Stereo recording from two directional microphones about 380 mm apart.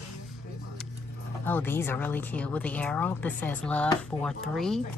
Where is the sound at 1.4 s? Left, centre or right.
Centre.